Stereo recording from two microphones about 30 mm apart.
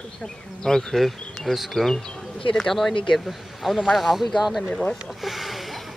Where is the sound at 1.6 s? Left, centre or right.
Centre.